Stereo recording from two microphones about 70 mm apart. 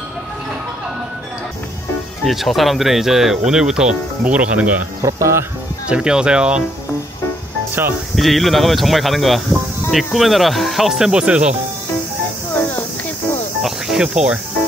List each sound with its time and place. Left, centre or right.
2.2 s speech: centre
5.0 s speech: right
5.9 s speech: centre
8.2 s speech: centre
13.6 s cricket: centre